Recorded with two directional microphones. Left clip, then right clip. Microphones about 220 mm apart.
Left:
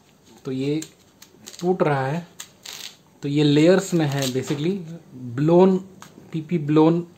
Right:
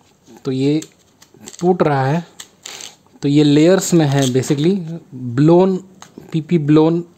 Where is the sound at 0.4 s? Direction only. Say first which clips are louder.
Right 8 dB; 45° right (ahead or behind).